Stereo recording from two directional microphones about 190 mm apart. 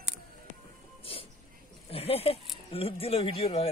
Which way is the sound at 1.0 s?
30° left (ahead or behind).